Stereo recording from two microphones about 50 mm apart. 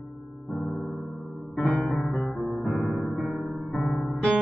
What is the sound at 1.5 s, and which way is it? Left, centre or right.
Music, left.